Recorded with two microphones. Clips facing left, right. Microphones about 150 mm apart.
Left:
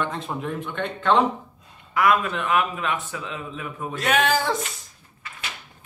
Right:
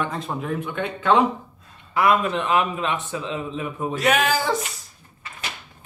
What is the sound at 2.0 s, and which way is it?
Speech, 25° right (ahead or behind).